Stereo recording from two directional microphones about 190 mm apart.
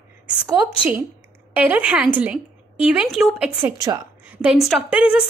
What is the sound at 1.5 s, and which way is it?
A woman's voice, 5° right (ahead or behind).